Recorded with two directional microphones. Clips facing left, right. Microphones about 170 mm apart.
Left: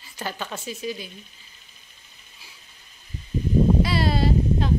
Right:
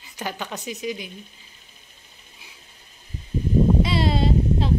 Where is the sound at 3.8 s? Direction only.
25° right (ahead or behind).